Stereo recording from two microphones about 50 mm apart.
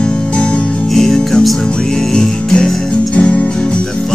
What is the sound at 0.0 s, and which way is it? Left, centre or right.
Music, centre.